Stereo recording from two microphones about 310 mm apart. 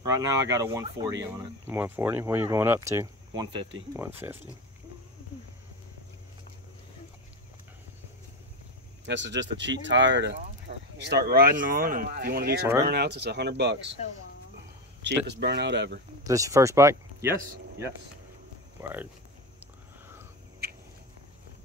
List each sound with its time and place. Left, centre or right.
0.1 s speech: centre
9.0 s speech: right
15.2 s speech: right
16.3 s speech: centre